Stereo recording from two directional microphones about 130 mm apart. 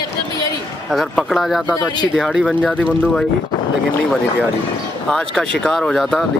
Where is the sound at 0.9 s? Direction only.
Centre (ahead or behind).